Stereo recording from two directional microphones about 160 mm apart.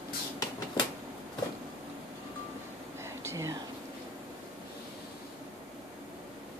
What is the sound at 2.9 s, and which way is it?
Whispering, 15° right (ahead or behind).